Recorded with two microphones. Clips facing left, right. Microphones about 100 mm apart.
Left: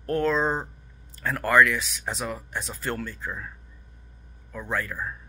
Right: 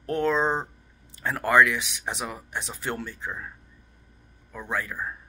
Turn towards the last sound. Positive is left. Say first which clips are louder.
# left 1 dB
turn(degrees=-15)  # may be behind; listen again after turning